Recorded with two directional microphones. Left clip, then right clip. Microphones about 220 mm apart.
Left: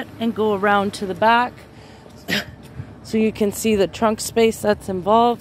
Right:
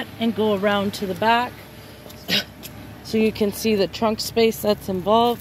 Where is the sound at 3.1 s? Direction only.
10° left (ahead or behind).